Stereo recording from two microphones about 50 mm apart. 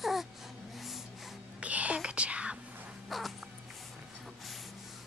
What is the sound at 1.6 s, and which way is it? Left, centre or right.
Whispering, right.